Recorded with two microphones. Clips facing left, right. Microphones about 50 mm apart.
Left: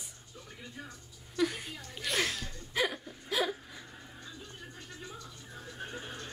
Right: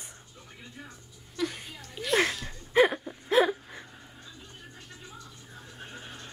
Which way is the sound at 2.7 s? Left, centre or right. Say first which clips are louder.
Right 10 dB; right.